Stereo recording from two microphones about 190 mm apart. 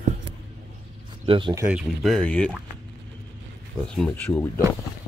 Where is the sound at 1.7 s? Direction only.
Centre (ahead or behind).